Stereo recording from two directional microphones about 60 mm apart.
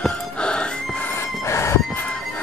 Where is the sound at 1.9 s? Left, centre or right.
Left.